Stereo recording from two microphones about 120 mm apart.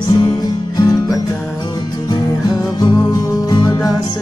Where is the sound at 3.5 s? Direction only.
35° left (ahead or behind).